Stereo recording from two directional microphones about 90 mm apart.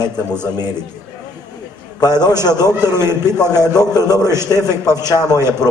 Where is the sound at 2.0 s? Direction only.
45° left (ahead or behind).